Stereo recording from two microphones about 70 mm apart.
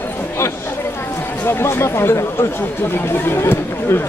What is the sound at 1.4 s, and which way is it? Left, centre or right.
Speech, left.